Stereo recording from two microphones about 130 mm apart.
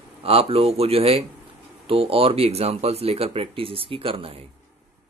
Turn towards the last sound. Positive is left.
turn(degrees=-45)  # may be behind; listen again after turning